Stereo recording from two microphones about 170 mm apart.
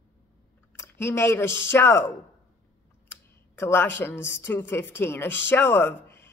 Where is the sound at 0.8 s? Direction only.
15° left (ahead or behind).